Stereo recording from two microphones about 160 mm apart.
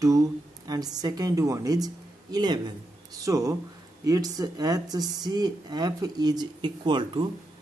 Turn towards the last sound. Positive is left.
turn(degrees=-30)  # may be behind; listen again after turning